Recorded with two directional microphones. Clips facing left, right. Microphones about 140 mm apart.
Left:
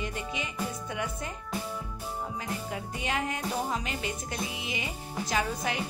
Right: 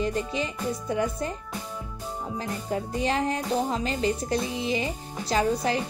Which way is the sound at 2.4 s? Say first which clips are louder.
Right 5 dB; 35° right (ahead or behind).